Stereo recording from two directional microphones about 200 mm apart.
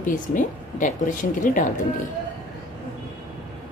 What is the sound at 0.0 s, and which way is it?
Speech, 40° left (ahead or behind).